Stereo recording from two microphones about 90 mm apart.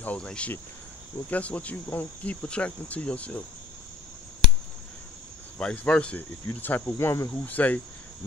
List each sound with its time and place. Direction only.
0.0 s speech: 15° left (ahead or behind)
5.6 s speech: 10° left (ahead or behind)